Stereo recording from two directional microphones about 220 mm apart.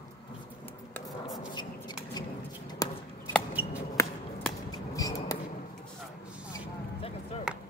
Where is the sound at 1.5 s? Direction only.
20° left (ahead or behind).